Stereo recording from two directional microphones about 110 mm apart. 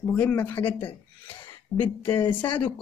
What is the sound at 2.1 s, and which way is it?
Speech, 50° left (ahead or behind).